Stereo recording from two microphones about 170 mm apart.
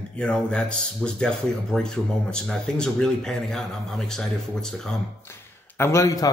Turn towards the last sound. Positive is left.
turn(degrees=20)  # may be behind; listen again after turning